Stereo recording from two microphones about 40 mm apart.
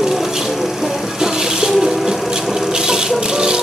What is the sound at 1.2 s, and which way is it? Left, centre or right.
Music, centre.